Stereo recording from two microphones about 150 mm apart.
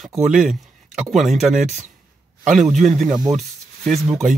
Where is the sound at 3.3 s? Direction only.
Centre (ahead or behind).